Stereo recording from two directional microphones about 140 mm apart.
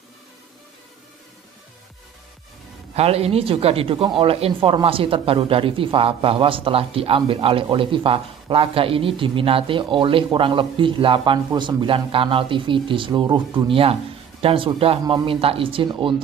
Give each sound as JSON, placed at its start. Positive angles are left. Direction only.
{"t": 2.9, "sound": "speech", "side_deg": -45}